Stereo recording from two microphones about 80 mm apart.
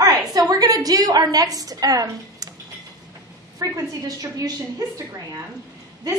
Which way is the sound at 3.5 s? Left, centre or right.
Right.